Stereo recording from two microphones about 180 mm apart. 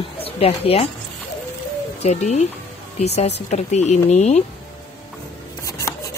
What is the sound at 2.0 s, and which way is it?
Speech, 40° left (ahead or behind).